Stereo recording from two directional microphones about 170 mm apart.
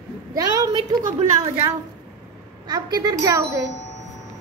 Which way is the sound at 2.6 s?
20° right (ahead or behind).